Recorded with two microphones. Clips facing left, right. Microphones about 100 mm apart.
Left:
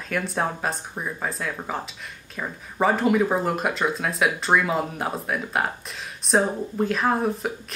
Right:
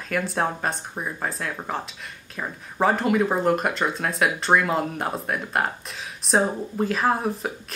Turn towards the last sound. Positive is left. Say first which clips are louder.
# even
turn(degrees=0)  # may be behind; listen again after turning